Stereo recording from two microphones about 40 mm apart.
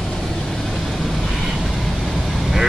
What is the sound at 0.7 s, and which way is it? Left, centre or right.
Vehicle, centre.